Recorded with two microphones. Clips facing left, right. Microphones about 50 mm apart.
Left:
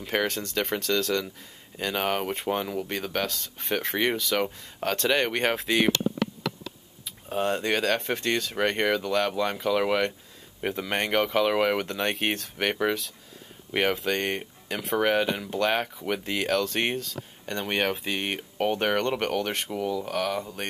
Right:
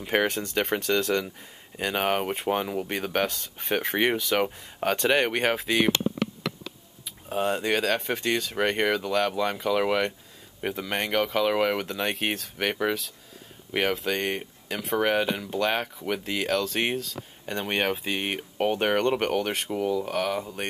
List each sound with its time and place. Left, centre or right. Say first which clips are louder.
0.0 s speech: right 2 dB; centre
7.1 s speech: even; centre